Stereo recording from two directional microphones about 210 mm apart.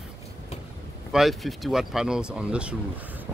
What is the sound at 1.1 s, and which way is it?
Speech, centre (ahead or behind).